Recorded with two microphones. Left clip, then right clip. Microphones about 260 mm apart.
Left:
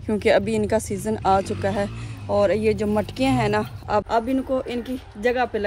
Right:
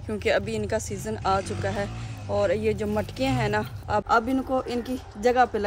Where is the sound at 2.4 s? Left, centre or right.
Left.